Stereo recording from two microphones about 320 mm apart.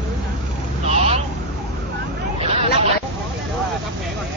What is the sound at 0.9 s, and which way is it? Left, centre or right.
Vehicle, centre.